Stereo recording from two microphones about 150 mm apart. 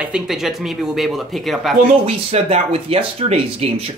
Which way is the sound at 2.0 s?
40° right (ahead or behind).